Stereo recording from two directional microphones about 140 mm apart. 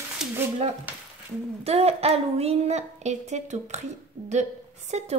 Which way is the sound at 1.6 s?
45° right (ahead or behind).